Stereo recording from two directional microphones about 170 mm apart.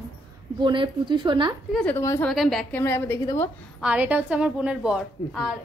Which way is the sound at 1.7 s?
5° left (ahead or behind).